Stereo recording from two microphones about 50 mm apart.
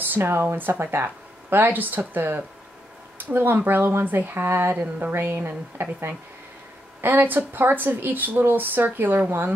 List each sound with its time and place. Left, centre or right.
0.0 s speech: right
4.7 s speech: right
5.1 s speech: right